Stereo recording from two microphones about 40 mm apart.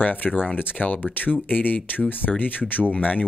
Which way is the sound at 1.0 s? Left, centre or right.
Left.